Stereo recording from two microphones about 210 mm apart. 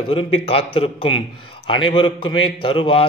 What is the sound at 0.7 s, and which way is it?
A man's voice, 25° left (ahead or behind).